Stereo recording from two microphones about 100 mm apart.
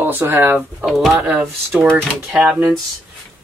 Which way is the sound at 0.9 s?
Centre (ahead or behind).